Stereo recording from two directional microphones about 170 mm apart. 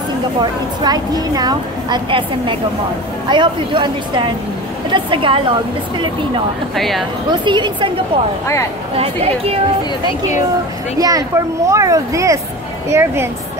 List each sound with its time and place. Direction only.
0.4 s speech: 25° right (ahead or behind)
6.7 s speech: centre (ahead or behind)
7.2 s speech: 25° right (ahead or behind)
8.9 s speech: 35° right (ahead or behind)
11.0 s a woman's voice: 20° right (ahead or behind)